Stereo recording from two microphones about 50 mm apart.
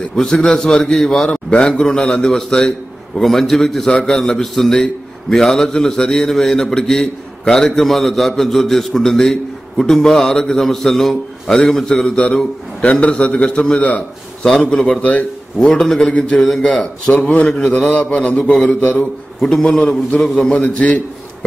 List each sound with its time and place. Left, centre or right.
0.2 s a man's voice: centre
1.3 s a man's voice: left
1.7 s a man's voice: centre
3.9 s a man's voice: centre
12.8 s a man's voice: left; by 14.7 s centre
15.0 s a man's voice: left
15.6 s a man's voice: centre
16.0 s a man's voice: left
16.4 s a man's voice: centre
16.8 s a man's voice: left
19.4 s a man's voice: centre
20.2 s a man's voice: centre
20.5 s a man's voice: left